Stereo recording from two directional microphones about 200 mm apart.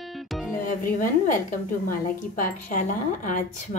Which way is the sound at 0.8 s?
40° left (ahead or behind).